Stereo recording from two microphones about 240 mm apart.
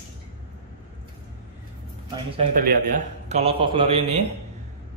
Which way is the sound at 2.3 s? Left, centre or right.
Right.